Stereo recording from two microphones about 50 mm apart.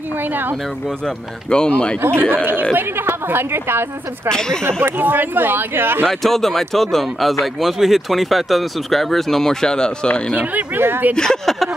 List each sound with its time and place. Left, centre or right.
0.2 s speech: right
0.8 s speech: centre
2.0 s speech: right
4.3 s speech: centre
4.6 s speech: right
6.0 s speech: centre
10.3 s speech: right
10.8 s speech: right
11.1 s speech: centre